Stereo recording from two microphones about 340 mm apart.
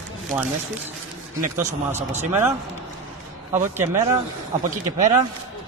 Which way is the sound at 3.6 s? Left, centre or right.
Centre.